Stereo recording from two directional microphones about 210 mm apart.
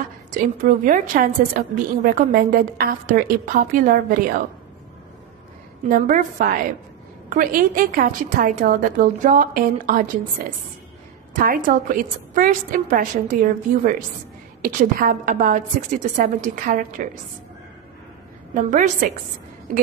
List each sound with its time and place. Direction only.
0.3 s a woman's voice: 40° right (ahead or behind)
5.9 s a woman's voice: 40° right (ahead or behind)
18.5 s a woman's voice: 35° right (ahead or behind)